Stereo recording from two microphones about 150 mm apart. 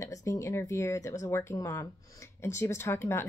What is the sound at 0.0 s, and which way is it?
Speech, 20° left (ahead or behind).